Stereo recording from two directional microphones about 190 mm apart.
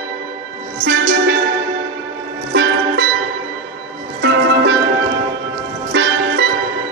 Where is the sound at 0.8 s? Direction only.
55° right (ahead or behind).